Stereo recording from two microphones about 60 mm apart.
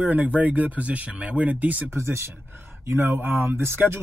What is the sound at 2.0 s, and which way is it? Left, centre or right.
Speech, right.